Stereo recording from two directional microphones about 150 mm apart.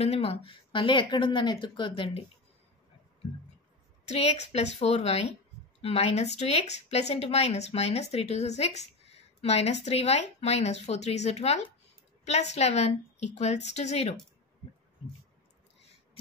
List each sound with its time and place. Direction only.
0.0 s speech: 40° left (ahead or behind)
4.1 s speech: 45° left (ahead or behind)